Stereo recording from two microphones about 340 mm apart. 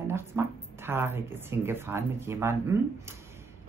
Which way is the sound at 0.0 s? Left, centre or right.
Centre.